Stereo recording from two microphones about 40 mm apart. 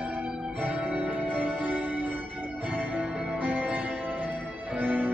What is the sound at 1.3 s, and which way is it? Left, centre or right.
Music, right.